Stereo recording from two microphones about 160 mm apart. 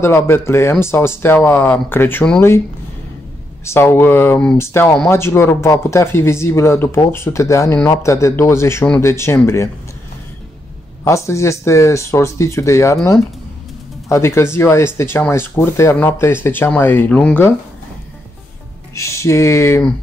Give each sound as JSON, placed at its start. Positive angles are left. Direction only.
{"t": 0.0, "sound": "speech", "side_deg": 15}
{"t": 3.6, "sound": "speech", "side_deg": 15}
{"t": 11.1, "sound": "speech", "side_deg": 20}
{"t": 18.9, "sound": "speech", "side_deg": 20}